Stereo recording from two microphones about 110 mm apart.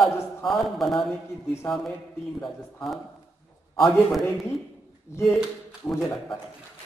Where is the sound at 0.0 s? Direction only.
Centre (ahead or behind).